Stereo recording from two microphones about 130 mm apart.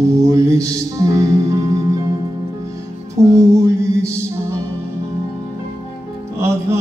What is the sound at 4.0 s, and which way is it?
Music, 20° right (ahead or behind).